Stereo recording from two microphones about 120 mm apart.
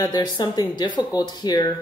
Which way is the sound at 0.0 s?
35° left (ahead or behind).